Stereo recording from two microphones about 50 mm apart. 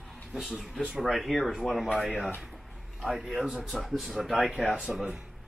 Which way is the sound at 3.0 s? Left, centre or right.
Centre.